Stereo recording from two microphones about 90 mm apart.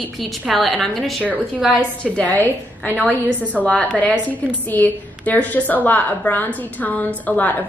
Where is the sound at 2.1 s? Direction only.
15° left (ahead or behind).